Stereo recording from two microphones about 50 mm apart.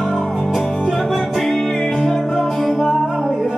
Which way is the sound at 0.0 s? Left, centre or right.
Centre.